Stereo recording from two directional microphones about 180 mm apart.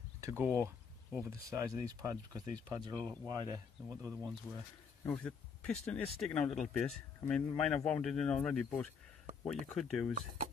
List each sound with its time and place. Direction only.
0.2 s speech: 15° right (ahead or behind)
5.0 s speech: 5° left (ahead or behind)
10.1 s speech: 45° right (ahead or behind)